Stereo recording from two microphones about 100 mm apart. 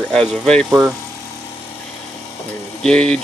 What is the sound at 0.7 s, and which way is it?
Speech, 25° right (ahead or behind).